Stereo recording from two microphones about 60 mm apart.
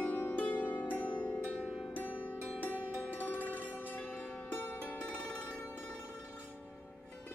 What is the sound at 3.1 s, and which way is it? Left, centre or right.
Music, left.